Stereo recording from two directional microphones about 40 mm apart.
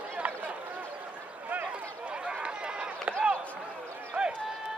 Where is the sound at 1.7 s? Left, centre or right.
Right.